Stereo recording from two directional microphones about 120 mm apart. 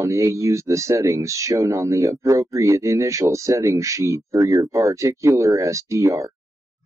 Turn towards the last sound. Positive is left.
turn(degrees=-25)  # may be behind; listen again after turning